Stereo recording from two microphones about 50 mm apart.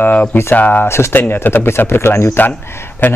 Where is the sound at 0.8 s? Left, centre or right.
Left.